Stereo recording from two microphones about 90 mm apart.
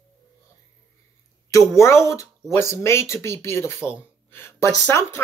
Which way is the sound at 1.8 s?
35° left (ahead or behind).